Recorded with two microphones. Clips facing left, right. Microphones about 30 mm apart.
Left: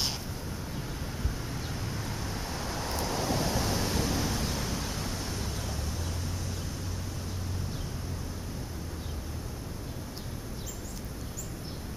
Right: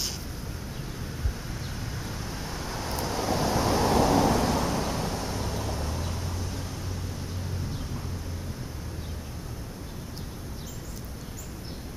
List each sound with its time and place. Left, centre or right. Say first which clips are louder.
1.3 s vehicle: even; centre
3.9 s vehicle: right 9 dB; right
4.7 s vehicle: right 6 dB; centre